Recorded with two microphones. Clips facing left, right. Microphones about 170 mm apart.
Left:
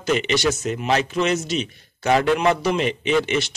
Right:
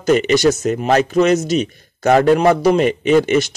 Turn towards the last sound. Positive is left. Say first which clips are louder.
# right 7 dB
turn(degrees=-45)  # may be behind; listen again after turning